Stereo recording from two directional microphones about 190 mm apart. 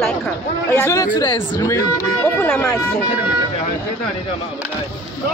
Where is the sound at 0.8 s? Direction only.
15° left (ahead or behind).